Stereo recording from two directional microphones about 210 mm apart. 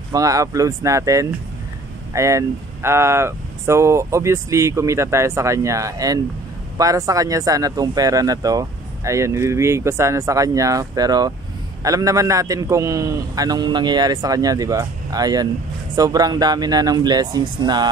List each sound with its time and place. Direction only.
0.1 s speech: 15° right (ahead or behind)